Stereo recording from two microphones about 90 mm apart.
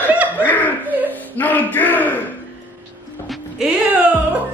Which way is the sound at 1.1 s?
20° left (ahead or behind).